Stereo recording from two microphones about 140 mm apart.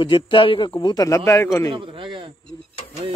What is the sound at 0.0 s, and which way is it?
A man's voice, 35° left (ahead or behind).